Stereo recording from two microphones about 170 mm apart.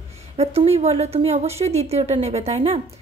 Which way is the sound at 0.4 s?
35° right (ahead or behind).